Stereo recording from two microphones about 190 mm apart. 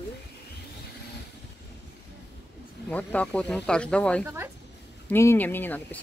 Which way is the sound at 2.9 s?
10° left (ahead or behind).